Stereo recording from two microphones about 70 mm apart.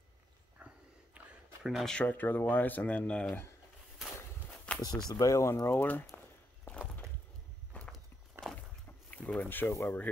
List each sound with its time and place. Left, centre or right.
0.6 s a sound: centre
1.9 s speech: centre
2.1 s speech: left
4.8 s speech: left
5.1 s speech: left
5.7 s speech: left
7.7 s walk: centre
8.4 s a sound: centre
9.1 s speech: left